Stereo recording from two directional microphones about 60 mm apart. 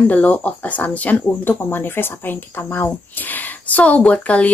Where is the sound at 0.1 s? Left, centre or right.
Left.